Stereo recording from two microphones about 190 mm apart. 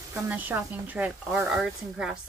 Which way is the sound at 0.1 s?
10° right (ahead or behind).